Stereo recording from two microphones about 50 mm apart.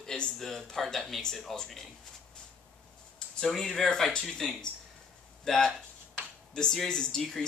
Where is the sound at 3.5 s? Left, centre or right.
Centre.